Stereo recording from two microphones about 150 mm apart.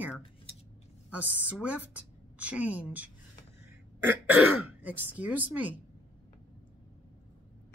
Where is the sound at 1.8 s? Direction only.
10° right (ahead or behind).